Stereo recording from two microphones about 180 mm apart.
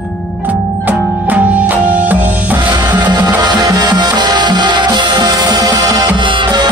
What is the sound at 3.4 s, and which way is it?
Music, 20° right (ahead or behind).